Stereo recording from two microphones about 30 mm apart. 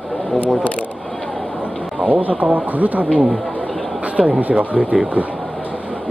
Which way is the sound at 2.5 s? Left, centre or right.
Right.